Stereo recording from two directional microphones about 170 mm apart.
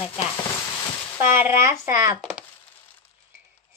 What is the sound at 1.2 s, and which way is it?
Speech, 15° right (ahead or behind).